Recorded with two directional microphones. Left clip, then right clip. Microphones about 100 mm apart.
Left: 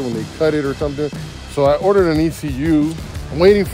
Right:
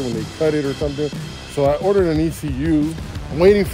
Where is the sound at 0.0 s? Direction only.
20° left (ahead or behind).